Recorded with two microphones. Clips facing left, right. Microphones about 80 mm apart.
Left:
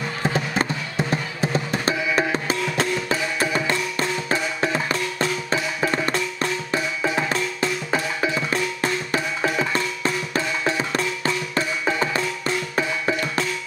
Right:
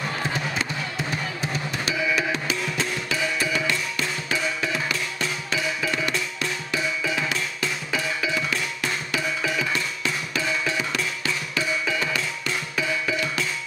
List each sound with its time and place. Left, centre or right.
0.3 s music: left